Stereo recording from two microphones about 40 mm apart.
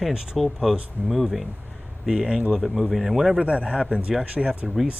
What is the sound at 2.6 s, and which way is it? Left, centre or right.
Speech, centre.